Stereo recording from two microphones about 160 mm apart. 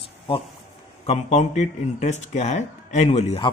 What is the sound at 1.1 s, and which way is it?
Speech, 45° left (ahead or behind).